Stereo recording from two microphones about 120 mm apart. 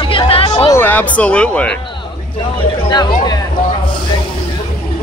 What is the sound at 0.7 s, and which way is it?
Speech, 20° left (ahead or behind).